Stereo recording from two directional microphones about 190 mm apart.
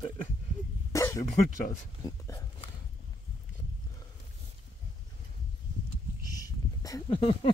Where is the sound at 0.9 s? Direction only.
15° left (ahead or behind).